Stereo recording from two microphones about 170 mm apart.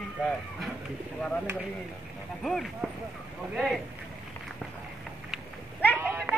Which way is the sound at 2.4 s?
Centre (ahead or behind).